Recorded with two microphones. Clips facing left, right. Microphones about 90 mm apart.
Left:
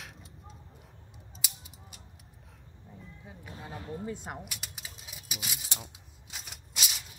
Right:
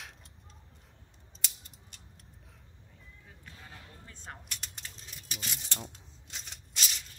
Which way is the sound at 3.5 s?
30° left (ahead or behind).